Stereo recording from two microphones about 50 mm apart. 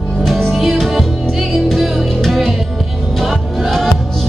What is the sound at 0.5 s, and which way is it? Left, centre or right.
Music, centre.